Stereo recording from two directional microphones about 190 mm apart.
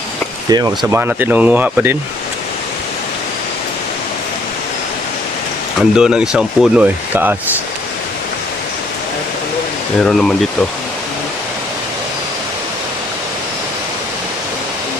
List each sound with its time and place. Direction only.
0.5 s speech: 20° right (ahead or behind)
1.0 s speech: 10° right (ahead or behind)
5.8 s speech: 5° right (ahead or behind)
10.0 s speech: centre (ahead or behind)